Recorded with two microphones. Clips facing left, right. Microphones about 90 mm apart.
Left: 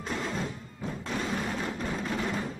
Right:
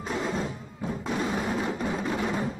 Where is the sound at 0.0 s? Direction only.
10° right (ahead or behind).